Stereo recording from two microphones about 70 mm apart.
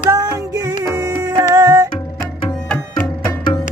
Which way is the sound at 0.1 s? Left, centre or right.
Right.